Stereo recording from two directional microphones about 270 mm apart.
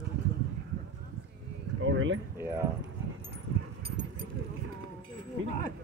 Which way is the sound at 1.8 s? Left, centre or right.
Right.